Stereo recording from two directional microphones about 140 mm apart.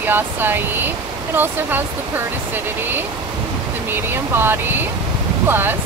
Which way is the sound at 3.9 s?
15° right (ahead or behind).